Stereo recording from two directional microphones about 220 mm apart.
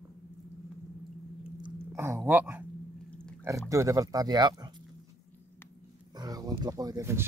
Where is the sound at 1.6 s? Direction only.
10° right (ahead or behind).